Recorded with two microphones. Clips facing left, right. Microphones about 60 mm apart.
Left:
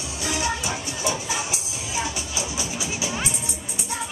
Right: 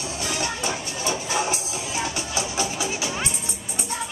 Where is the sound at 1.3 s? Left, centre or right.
Right.